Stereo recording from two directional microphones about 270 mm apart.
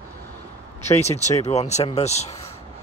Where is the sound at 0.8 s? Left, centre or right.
Left.